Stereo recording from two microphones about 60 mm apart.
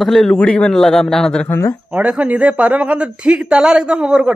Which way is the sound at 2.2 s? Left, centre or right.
Right.